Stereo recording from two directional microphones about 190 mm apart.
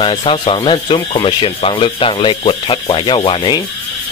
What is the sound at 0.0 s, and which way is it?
Speech, 30° left (ahead or behind).